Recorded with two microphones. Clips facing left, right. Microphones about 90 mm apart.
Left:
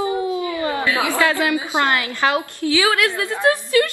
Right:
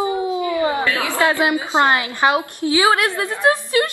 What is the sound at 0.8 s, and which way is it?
Chatter, 20° left (ahead or behind).